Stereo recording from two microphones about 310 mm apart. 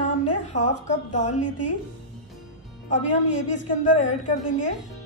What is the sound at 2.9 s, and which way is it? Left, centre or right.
A woman's voice, left.